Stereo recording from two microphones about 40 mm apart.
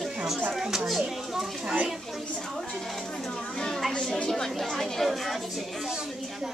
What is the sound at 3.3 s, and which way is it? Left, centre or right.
Speech, centre.